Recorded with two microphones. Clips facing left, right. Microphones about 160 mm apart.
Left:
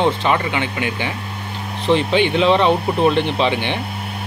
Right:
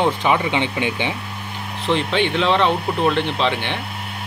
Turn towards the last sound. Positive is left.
turn(degrees=5)  # may be behind; listen again after turning